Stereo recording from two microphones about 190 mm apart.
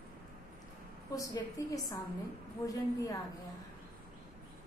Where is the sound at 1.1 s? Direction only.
20° left (ahead or behind).